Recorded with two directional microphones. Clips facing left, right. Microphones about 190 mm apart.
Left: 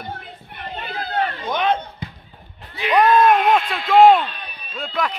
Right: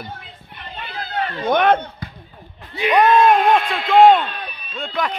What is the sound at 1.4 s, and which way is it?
Speech, 60° right (ahead or behind).